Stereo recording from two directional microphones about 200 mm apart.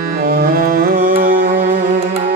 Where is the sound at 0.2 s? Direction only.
45° right (ahead or behind).